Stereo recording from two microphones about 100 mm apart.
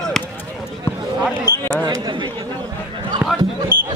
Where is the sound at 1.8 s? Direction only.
45° right (ahead or behind).